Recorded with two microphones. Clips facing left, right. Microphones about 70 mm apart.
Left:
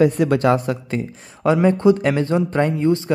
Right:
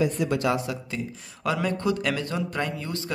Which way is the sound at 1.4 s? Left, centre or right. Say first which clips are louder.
Left 11 dB; left.